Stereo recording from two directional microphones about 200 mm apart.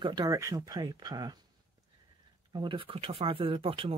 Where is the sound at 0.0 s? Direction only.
20° right (ahead or behind).